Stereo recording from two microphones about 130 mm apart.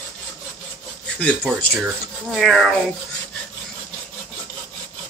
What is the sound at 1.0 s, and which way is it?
Speech, 10° left (ahead or behind).